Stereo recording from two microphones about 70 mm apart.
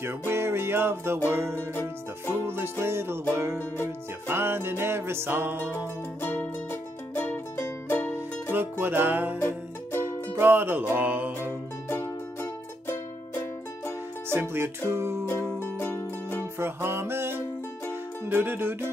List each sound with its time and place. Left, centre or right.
0.3 s music: right
3.5 s music: left
4.3 s music: right
6.7 s music: left
8.5 s music: right
9.4 s music: left
10.3 s music: right
11.9 s music: left
14.3 s music: right
15.2 s music: left
16.5 s music: right